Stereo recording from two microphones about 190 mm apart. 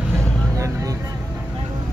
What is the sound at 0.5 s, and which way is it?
Vehicle, 15° right (ahead or behind).